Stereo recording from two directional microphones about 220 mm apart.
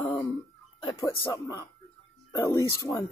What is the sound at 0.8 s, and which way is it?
A woman's voice, 15° left (ahead or behind).